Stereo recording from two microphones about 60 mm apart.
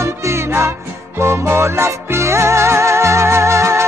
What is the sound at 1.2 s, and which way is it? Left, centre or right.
Music, right.